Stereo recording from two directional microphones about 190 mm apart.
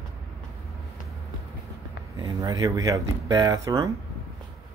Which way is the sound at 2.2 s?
20° right (ahead or behind).